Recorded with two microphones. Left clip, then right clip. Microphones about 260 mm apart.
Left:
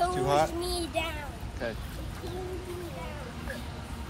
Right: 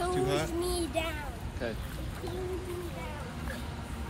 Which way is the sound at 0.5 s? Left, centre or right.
Centre.